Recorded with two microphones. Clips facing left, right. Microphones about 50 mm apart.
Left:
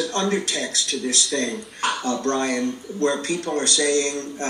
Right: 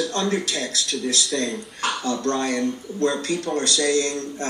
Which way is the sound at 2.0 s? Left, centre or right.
Left.